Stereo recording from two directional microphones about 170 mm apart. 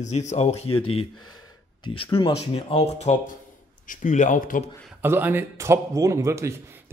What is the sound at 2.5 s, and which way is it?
Speech, 40° left (ahead or behind).